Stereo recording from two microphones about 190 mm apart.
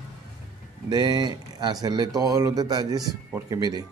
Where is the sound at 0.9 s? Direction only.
20° right (ahead or behind).